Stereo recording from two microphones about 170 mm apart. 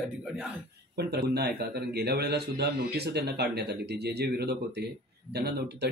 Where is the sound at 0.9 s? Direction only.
70° right (ahead or behind).